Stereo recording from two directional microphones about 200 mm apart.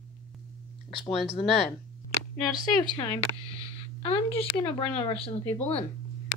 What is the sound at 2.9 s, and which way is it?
Speech, 20° left (ahead or behind).